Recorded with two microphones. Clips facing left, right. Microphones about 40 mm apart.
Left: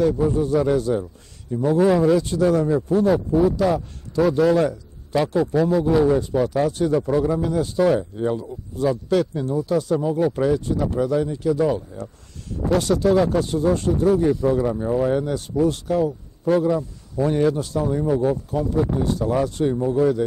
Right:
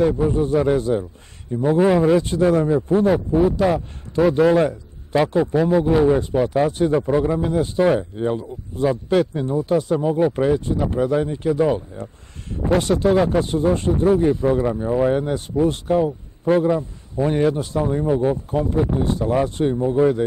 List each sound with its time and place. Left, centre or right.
0.0 s speech: right